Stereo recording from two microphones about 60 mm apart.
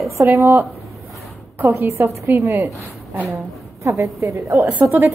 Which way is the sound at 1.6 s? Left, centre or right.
Right.